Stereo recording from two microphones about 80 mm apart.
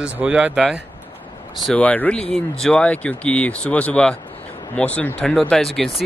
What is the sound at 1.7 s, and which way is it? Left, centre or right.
Speech, centre.